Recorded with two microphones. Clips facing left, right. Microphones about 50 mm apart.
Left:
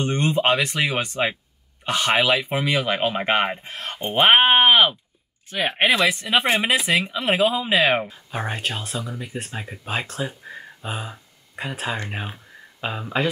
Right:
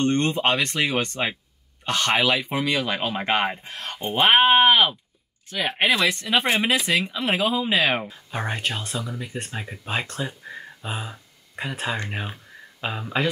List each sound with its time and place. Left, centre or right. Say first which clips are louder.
0.0 s speech: even; centre
7.2 s speech: left 3 dB; centre